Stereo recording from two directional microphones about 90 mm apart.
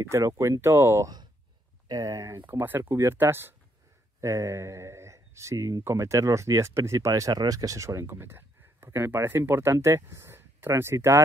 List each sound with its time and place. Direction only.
0.1 s speech: 35° right (ahead or behind)
2.4 s speech: 20° right (ahead or behind)